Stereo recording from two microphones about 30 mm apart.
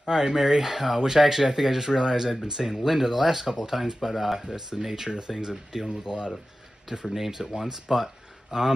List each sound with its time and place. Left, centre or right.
0.0 s speech: centre
5.3 s speech: right
7.2 s speech: centre